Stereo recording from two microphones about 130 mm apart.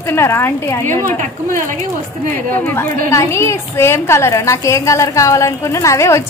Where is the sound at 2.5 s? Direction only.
15° left (ahead or behind).